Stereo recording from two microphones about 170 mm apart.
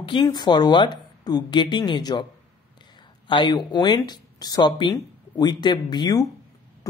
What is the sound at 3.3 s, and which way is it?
Speech, 25° left (ahead or behind).